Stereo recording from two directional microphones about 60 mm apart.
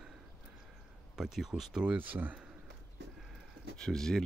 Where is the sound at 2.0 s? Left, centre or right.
Right.